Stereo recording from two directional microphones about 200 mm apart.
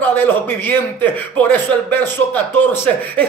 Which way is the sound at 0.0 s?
10° left (ahead or behind).